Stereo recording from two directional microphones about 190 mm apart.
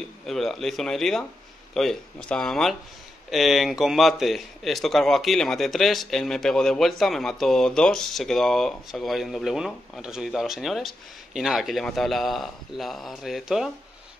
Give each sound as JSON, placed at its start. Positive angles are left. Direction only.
{"t": 0.3, "sound": "speech", "side_deg": 0}